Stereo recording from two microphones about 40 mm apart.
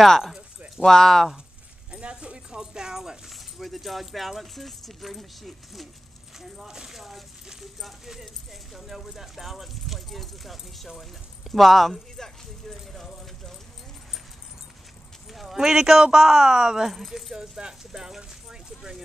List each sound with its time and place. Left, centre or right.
0.8 s speech: centre
1.9 s speech: right
3.3 s speech: centre
12.2 s a sound: centre
15.3 s speech: centre